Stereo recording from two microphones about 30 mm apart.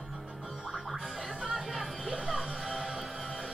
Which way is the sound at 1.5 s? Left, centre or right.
Centre.